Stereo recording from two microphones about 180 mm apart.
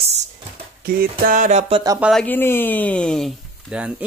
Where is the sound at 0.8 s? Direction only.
55° right (ahead or behind); by 1.8 s 35° right (ahead or behind).